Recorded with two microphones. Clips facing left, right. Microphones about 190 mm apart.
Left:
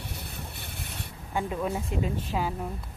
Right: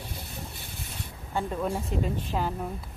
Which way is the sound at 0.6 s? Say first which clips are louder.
Left 1 dB; 60° left (ahead or behind).